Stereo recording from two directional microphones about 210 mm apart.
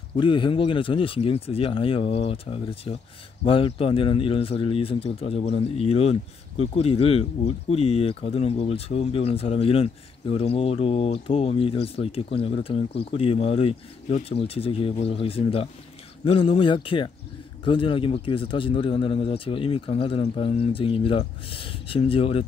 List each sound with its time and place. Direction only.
0.2 s speech: 25° left (ahead or behind)